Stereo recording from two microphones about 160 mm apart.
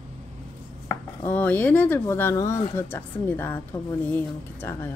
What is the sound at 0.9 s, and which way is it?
Chopping, 10° left (ahead or behind).